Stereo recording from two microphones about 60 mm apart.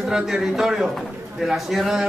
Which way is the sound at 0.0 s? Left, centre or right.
Centre.